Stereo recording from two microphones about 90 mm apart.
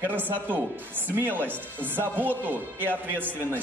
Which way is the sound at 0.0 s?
20° right (ahead or behind).